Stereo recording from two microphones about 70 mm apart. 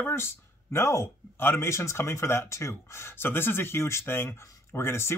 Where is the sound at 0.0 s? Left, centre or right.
Left.